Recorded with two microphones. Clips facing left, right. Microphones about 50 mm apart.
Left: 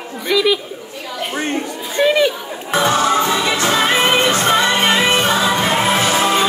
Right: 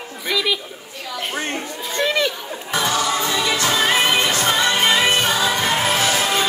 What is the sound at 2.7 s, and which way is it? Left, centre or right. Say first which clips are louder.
Music: left 6 dB; left.